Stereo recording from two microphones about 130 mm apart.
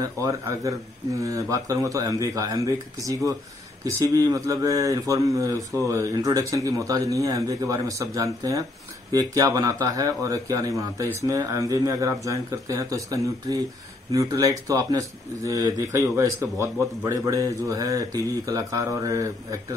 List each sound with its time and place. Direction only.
0.0 s speech: 25° right (ahead or behind)